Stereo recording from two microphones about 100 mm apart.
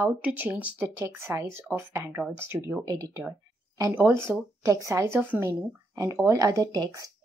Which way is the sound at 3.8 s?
25° right (ahead or behind).